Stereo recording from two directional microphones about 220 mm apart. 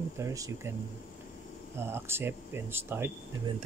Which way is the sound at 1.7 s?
10° right (ahead or behind).